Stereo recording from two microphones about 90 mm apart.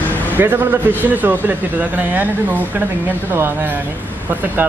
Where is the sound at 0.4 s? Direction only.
25° right (ahead or behind).